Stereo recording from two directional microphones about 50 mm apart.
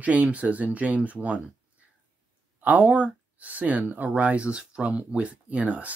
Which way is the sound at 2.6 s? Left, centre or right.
Right.